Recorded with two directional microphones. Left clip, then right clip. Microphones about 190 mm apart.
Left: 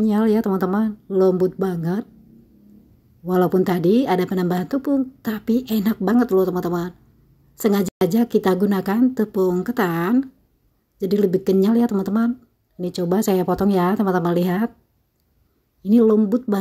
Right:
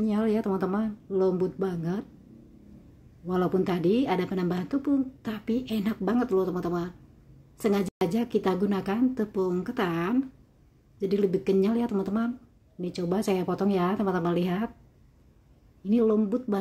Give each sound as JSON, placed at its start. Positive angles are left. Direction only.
{"t": 0.0, "sound": "a woman's voice", "side_deg": 35}
{"t": 3.3, "sound": "a woman's voice", "side_deg": 35}
{"t": 15.8, "sound": "a woman's voice", "side_deg": 35}